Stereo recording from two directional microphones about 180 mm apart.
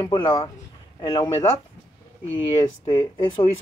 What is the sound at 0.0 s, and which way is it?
Speech, 25° left (ahead or behind).